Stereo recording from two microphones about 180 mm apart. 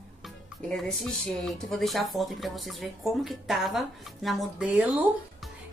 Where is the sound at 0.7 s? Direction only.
5° left (ahead or behind).